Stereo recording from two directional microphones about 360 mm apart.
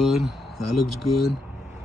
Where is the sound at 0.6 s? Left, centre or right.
Left.